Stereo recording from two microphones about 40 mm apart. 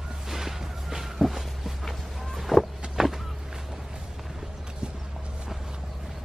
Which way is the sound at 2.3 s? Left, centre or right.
Centre.